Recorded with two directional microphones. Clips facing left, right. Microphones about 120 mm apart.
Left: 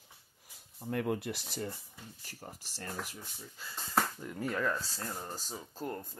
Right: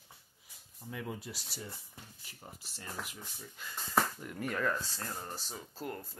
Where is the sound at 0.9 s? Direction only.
65° left (ahead or behind).